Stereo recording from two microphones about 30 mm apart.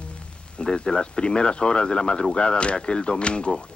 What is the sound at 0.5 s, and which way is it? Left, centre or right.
Speech, left.